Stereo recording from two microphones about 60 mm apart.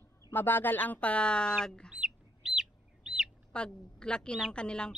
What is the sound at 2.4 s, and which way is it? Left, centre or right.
Bird, centre.